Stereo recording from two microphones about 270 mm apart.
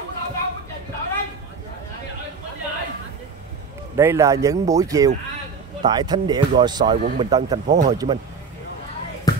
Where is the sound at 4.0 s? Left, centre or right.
Centre.